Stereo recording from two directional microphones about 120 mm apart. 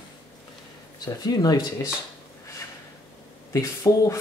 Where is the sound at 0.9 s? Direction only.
35° left (ahead or behind).